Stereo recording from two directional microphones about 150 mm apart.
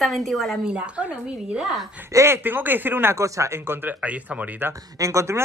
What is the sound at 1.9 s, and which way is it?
Speech, 15° right (ahead or behind).